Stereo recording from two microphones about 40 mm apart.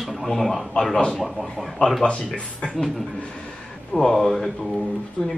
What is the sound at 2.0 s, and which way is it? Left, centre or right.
Speech, left.